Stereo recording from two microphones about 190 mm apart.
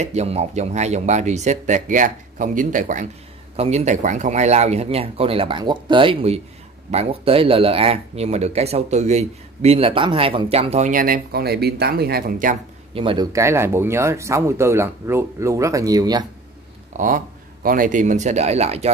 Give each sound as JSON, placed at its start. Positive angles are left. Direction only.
{"t": 0.0, "sound": "speech", "side_deg": -35}
{"t": 12.9, "sound": "speech", "side_deg": -25}
{"t": 16.9, "sound": "speech", "side_deg": -45}